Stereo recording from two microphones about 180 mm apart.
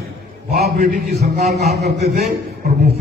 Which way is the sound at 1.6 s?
60° right (ahead or behind).